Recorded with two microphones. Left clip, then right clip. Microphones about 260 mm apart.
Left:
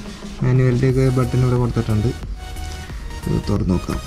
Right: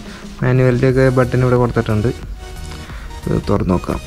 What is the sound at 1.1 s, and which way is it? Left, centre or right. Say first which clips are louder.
Speech: right 7 dB; centre.